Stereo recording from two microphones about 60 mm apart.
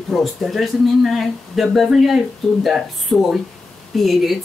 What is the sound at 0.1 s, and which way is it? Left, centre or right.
Speech, centre.